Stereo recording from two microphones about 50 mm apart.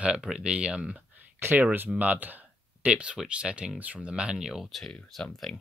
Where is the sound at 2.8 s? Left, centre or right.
Right.